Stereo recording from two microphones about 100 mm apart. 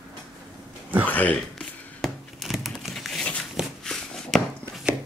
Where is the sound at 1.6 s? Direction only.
Centre (ahead or behind).